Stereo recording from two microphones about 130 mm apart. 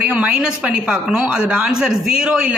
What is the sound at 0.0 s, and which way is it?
A woman's voice, 10° right (ahead or behind).